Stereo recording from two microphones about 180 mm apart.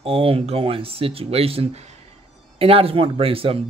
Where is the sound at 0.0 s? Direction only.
30° right (ahead or behind).